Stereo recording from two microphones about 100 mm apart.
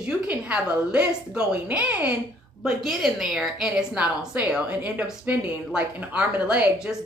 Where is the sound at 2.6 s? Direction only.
Centre (ahead or behind).